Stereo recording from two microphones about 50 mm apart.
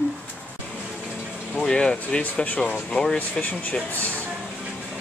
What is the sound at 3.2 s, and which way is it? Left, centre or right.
Speech, left.